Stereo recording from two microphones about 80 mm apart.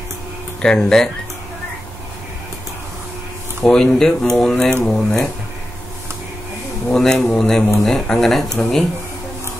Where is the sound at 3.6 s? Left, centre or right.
Centre.